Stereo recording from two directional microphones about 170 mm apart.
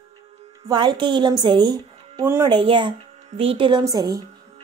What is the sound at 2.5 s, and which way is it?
A woman's voice, 30° right (ahead or behind).